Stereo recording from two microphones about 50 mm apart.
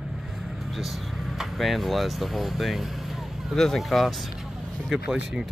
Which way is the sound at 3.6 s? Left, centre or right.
Centre.